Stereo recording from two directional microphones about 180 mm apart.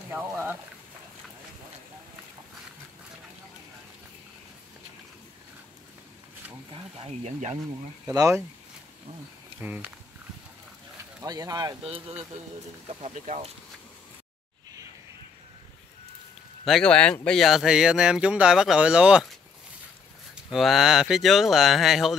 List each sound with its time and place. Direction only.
0.1 s a sound: 10° right (ahead or behind)
6.7 s speech: 25° right (ahead or behind)
8.1 s speech: 15° right (ahead or behind)
9.6 s speech: 10° right (ahead or behind)
11.2 s speech: 20° right (ahead or behind)
12.8 s speech: 35° right (ahead or behind)
16.6 s speech: 5° left (ahead or behind)
20.4 s speech: centre (ahead or behind)